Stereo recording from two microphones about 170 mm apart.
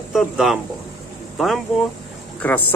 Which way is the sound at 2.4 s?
10° left (ahead or behind).